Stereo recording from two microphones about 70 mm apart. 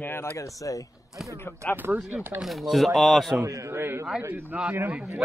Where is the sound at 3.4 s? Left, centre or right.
Right.